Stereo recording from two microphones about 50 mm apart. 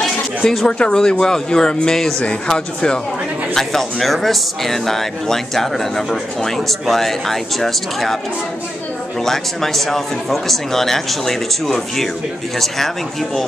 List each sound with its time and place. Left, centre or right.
0.4 s speech: centre
0.7 s speech: centre
3.5 s speech: centre
9.2 s speech: centre